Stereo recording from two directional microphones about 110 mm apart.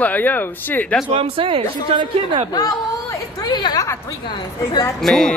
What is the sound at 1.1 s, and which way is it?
Speech, 60° right (ahead or behind).